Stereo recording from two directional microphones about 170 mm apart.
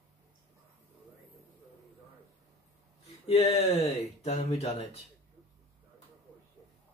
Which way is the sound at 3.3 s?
35° left (ahead or behind).